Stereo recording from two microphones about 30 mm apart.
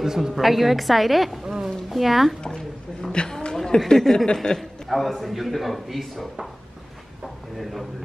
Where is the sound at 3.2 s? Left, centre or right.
Left.